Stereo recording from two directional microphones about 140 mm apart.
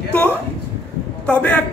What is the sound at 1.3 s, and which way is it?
Speech, 10° left (ahead or behind).